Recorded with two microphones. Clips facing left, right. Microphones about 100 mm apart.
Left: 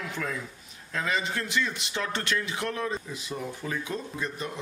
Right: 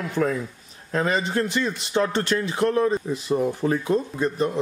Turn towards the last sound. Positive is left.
turn(degrees=-40)  # may be behind; listen again after turning